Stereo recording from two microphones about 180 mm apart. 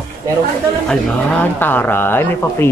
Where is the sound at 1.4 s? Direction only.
10° left (ahead or behind).